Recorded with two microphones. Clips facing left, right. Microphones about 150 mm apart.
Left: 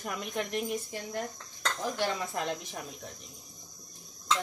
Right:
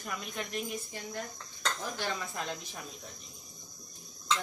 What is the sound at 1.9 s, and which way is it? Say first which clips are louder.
Speech: left 5 dB; 60° left (ahead or behind).